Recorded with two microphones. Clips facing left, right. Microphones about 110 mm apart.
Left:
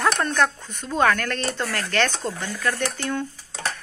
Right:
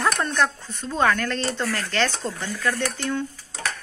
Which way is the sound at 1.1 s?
25° right (ahead or behind).